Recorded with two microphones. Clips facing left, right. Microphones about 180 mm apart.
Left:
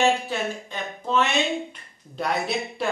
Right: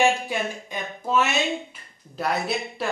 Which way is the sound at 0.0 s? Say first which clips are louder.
Even; 10° right (ahead or behind).